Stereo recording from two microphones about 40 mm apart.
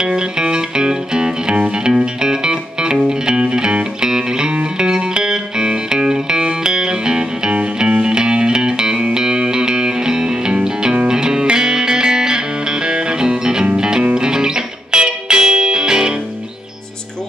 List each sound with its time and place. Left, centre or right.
0.0 s music: right